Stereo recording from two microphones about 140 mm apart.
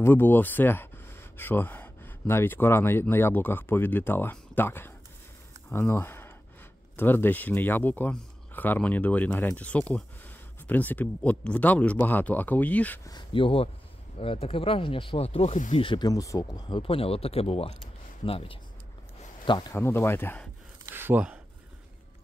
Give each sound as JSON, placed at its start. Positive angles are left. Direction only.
{"t": 0.0, "sound": "speech", "side_deg": 15}
{"t": 13.3, "sound": "speech", "side_deg": 40}
{"t": 15.8, "sound": "speech", "side_deg": 35}
{"t": 16.1, "sound": "speech", "side_deg": 25}
{"t": 19.7, "sound": "speech", "side_deg": 15}
{"t": 20.8, "sound": "a sound", "side_deg": -15}